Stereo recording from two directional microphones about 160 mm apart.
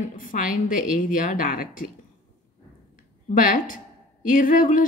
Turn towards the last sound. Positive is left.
turn(degrees=55)  # may be behind; listen again after turning